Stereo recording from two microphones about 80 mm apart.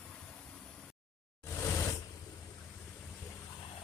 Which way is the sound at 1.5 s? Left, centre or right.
Left.